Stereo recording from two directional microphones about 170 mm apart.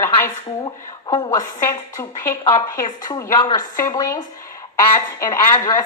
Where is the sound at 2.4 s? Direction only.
25° left (ahead or behind).